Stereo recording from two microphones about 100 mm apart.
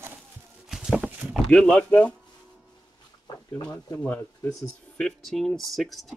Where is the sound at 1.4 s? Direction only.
10° left (ahead or behind).